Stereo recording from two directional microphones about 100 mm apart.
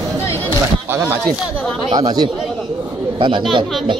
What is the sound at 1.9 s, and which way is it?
Speech, 45° right (ahead or behind).